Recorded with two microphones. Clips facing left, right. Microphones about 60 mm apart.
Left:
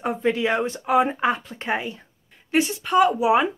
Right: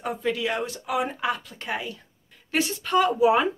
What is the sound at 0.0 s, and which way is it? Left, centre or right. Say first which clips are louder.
Speech: left 4 dB; left.